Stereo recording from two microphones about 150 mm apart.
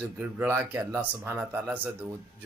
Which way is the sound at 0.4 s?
15° right (ahead or behind).